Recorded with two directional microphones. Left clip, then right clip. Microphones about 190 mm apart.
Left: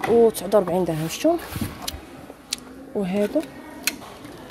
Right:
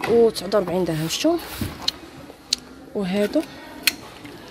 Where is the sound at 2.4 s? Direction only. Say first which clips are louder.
Right 7 dB; centre (ahead or behind).